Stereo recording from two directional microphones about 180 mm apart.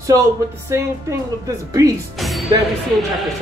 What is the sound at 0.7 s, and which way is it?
Speech, 15° right (ahead or behind).